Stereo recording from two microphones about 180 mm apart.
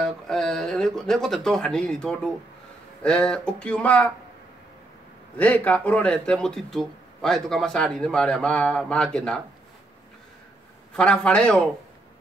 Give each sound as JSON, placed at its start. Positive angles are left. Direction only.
{"t": 0.0, "sound": "speech", "side_deg": 0}
{"t": 5.4, "sound": "speech", "side_deg": 10}
{"t": 11.0, "sound": "speech", "side_deg": 5}